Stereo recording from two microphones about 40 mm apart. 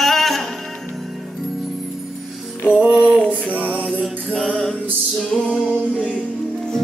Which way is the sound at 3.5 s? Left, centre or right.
Right.